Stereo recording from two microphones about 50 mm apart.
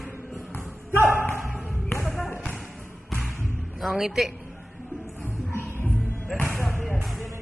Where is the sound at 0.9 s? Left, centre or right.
Right.